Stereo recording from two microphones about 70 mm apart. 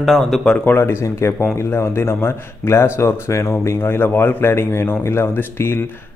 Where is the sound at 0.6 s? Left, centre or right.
Left.